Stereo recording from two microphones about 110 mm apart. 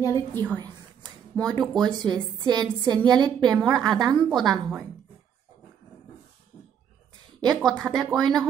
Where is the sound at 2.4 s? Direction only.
40° right (ahead or behind).